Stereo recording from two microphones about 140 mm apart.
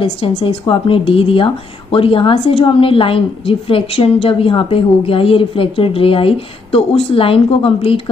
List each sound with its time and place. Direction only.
0.0 s a woman's voice: 45° left (ahead or behind)